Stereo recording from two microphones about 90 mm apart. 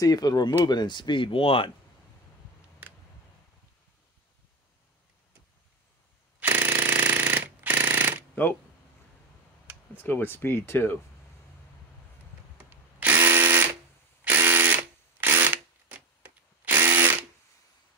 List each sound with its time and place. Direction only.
0.0 s speech: 45° left (ahead or behind); by 1.7 s 75° left (ahead or behind)
6.4 s jackhammer: 20° right (ahead or behind)
10.0 s speech: 25° left (ahead or behind)
12.6 s a sound: 25° right (ahead or behind)
14.2 s drill: 25° right (ahead or behind)
16.2 s a sound: 20° right (ahead or behind)
16.9 s ratchet: 25° right (ahead or behind)